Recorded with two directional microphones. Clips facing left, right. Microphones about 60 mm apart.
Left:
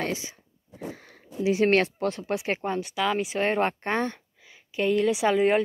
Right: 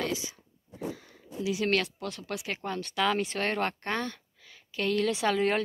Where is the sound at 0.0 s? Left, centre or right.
Left.